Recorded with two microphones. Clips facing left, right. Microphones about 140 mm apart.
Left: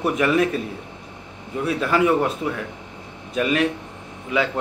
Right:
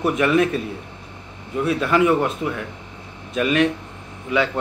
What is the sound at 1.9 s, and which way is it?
Speech, 30° left (ahead or behind).